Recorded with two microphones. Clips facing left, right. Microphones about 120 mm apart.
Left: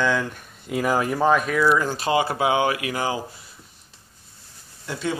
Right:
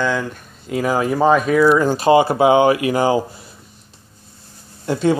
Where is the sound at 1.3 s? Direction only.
25° right (ahead or behind).